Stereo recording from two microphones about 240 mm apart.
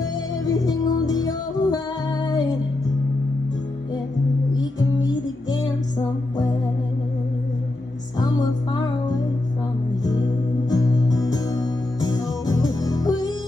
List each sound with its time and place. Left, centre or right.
0.0 s music: centre
8.2 s music: centre
10.7 s music: centre